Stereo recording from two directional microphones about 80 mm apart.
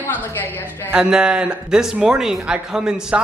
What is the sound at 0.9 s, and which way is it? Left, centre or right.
Speech, centre.